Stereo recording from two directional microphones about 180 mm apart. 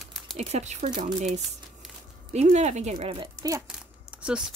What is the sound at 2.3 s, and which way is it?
Speech, 40° right (ahead or behind).